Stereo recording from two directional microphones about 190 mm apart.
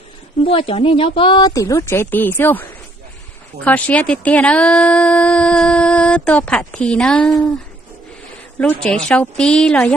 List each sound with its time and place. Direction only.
0.5 s speech: 30° left (ahead or behind); by 2.6 s 10° left (ahead or behind)
3.6 s speech: 10° left (ahead or behind)
8.5 s speech: 5° left (ahead or behind)